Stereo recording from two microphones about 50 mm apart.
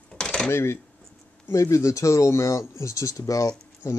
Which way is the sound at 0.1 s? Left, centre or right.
Centre.